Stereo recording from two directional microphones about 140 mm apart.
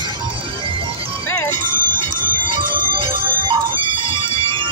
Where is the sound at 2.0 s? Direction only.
35° right (ahead or behind).